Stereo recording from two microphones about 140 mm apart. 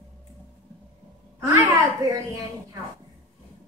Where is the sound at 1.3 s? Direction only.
20° right (ahead or behind).